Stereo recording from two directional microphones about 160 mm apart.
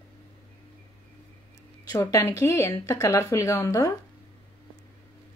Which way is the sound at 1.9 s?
20° left (ahead or behind).